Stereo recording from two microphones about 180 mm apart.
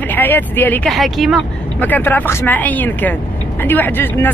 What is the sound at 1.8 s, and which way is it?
Speech, 10° left (ahead or behind).